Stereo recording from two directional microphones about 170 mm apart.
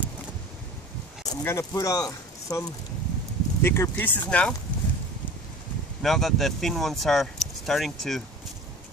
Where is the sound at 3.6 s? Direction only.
15° left (ahead or behind).